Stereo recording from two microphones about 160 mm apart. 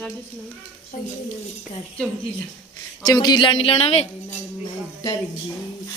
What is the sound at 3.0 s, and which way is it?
Speech, 25° left (ahead or behind).